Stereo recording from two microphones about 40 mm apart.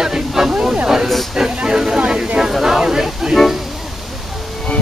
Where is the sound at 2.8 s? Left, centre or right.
Centre.